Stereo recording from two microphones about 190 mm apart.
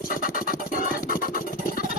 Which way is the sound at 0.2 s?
45° left (ahead or behind).